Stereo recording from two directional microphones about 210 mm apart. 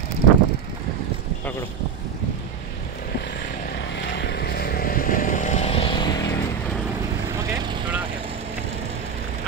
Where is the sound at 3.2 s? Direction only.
55° left (ahead or behind); by 6.4 s 20° left (ahead or behind).